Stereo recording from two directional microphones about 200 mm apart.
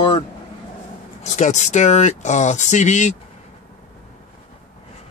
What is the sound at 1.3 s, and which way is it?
Speech, 35° left (ahead or behind).